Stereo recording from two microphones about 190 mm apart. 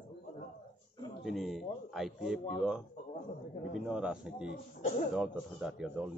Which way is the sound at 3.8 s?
5° right (ahead or behind).